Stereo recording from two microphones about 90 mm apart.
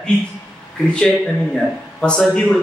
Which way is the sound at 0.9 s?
10° left (ahead or behind).